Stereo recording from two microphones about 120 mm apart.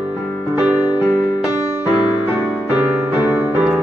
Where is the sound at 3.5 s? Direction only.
10° right (ahead or behind).